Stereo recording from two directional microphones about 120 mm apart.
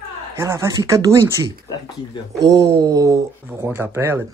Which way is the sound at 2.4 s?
30° right (ahead or behind).